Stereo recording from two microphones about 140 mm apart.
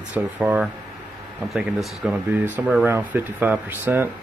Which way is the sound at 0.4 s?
10° right (ahead or behind).